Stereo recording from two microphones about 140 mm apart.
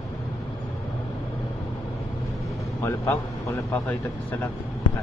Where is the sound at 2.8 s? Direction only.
20° left (ahead or behind).